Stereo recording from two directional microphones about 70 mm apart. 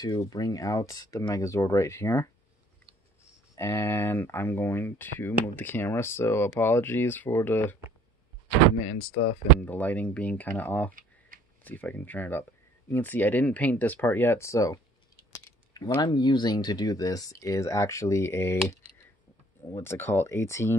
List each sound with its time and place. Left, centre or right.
0.0 s speech: left
3.5 s speech: left
9.6 s speech: left
15.3 s keys jangling: left
16.0 s speech: left
19.7 s speech: left